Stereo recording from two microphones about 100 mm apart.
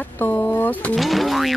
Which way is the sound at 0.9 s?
Centre (ahead or behind).